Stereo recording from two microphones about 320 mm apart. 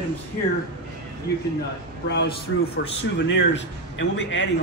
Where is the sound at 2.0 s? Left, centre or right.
Left.